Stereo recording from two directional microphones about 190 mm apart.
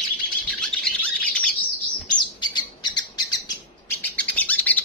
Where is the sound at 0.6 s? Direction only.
5° left (ahead or behind).